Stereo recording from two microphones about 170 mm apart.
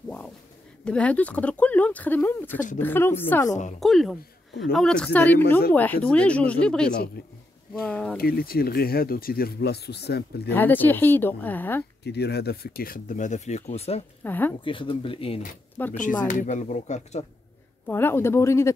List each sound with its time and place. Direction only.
0.8 s speech: 5° left (ahead or behind)
3.8 s speech: centre (ahead or behind)
7.2 s speech: 65° left (ahead or behind)
7.8 s speech: 5° left (ahead or behind)
8.2 s speech: 60° left (ahead or behind)
10.5 s speech: 10° left (ahead or behind)
12.0 s speech: 75° left (ahead or behind); by 14.0 s 35° left (ahead or behind)
14.2 s speech: 10° left (ahead or behind)
14.6 s speech: 30° left (ahead or behind)
15.8 s speech: 10° left (ahead or behind)
16.3 s speech: 45° left (ahead or behind)
17.8 s speech: 15° left (ahead or behind)